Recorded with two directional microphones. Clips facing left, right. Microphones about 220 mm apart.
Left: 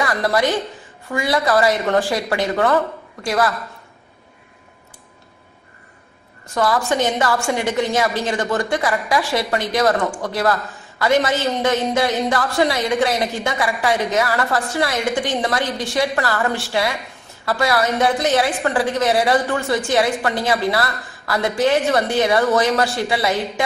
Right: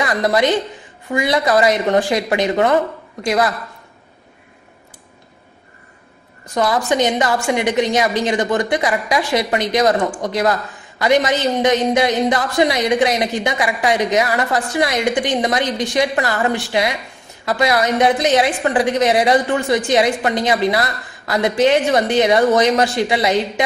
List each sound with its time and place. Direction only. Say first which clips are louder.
0.0 s a woman's voice: right 2 dB; 20° right (ahead or behind)
6.5 s a woman's voice: right 2 dB; 15° right (ahead or behind)